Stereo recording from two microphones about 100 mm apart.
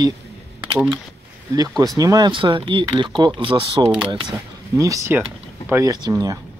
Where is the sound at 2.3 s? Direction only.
55° right (ahead or behind).